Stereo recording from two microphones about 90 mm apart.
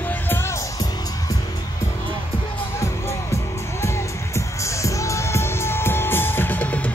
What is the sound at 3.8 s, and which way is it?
Music, 35° left (ahead or behind).